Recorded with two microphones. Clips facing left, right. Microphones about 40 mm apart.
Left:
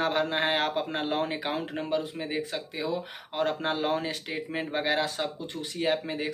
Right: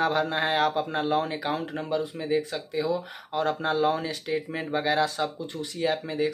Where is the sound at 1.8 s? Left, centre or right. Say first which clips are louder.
Right 1 dB; left.